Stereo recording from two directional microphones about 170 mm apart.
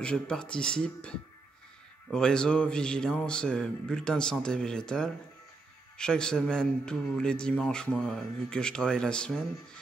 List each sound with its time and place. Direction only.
0.0 s speech: 5° left (ahead or behind)